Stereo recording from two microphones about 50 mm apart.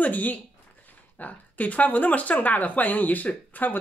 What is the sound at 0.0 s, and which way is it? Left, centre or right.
Speech, left.